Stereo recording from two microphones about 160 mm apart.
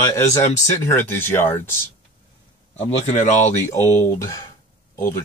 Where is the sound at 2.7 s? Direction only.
45° left (ahead or behind).